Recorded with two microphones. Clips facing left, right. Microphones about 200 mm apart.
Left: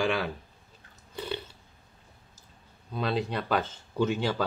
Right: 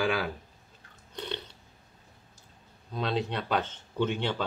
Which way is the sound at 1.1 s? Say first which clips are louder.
Left 2 dB; 5° left (ahead or behind).